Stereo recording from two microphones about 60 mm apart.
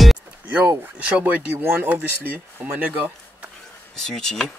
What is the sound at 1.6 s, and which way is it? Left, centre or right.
Speech, right.